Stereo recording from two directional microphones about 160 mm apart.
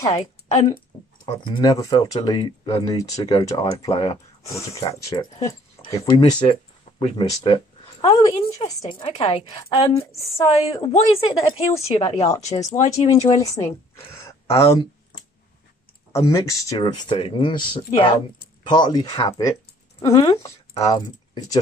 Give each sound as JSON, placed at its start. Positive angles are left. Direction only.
{"t": 0.2, "sound": "a woman's voice", "side_deg": 45}
{"t": 1.2, "sound": "speech", "side_deg": 25}
{"t": 7.4, "sound": "a woman's voice", "side_deg": 30}
{"t": 9.0, "sound": "speech", "side_deg": 35}
{"t": 12.0, "sound": "speech", "side_deg": 20}
{"t": 12.8, "sound": "speech", "side_deg": 45}
{"t": 13.3, "sound": "speech", "side_deg": 20}
{"t": 16.1, "sound": "speech", "side_deg": 20}
{"t": 16.8, "sound": "speech", "side_deg": 30}